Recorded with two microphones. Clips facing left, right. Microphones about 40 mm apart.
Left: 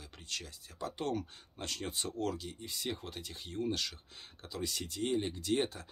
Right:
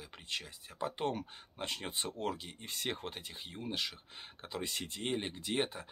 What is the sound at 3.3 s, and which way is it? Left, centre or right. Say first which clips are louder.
Speech: left 8 dB; centre.